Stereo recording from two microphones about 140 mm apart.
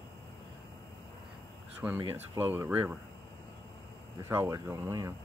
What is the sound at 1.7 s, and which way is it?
Speech, 10° right (ahead or behind).